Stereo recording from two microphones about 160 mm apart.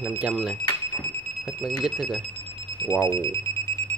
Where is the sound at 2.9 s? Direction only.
20° left (ahead or behind).